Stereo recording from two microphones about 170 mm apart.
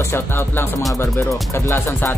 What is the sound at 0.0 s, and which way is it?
Speech, 15° left (ahead or behind).